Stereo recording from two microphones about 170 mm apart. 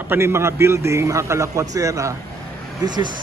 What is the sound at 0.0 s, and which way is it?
A man's voice, 15° right (ahead or behind).